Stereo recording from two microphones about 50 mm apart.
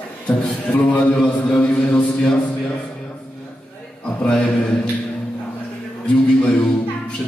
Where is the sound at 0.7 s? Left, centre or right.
Left.